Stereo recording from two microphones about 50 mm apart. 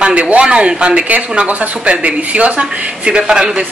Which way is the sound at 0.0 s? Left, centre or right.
Right.